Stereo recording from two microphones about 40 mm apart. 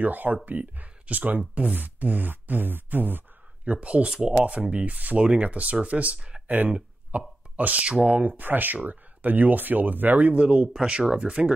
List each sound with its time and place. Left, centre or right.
0.0 s speech: right
3.6 s speech: right
4.7 s speech: right
6.4 s speech: right
7.1 s plop: right
7.9 s speech: right
8.2 s speech: right
10.3 s speech: right
10.7 s speech: centre